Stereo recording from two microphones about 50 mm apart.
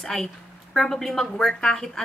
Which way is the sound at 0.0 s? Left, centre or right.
Centre.